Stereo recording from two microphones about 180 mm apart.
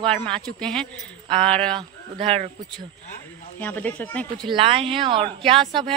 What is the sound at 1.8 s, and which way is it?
Speech, 30° right (ahead or behind).